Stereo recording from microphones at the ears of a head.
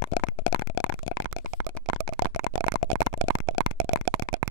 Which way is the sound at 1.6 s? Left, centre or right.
Right.